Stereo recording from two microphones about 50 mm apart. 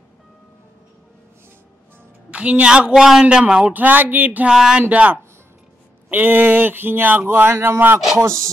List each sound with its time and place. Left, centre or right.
2.3 s a woman's voice: right
3.7 s speech: right
4.5 s speech: centre
4.8 s a woman's voice: right
6.0 s speech: right
8.2 s chopping: right